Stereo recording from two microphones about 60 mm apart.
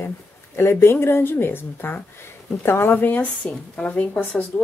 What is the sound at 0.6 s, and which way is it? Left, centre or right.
Speech, left.